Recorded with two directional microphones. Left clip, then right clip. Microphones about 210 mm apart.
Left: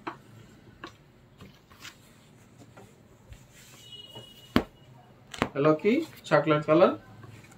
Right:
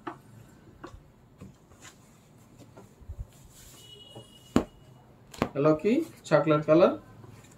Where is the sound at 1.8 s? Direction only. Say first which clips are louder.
Left 6 dB; 35° left (ahead or behind).